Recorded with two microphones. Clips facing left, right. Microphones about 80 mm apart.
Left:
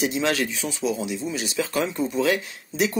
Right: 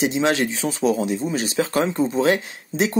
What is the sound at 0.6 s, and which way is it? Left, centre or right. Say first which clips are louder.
Speech: right 6 dB; right.